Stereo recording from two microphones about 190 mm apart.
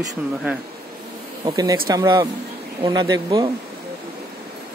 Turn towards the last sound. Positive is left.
turn(degrees=-20)  # may be behind; listen again after turning